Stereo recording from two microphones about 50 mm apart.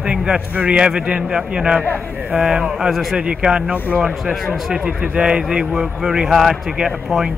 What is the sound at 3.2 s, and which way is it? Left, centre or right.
A man's voice, centre.